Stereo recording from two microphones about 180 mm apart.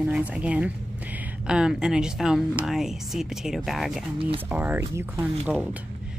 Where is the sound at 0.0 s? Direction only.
5° right (ahead or behind).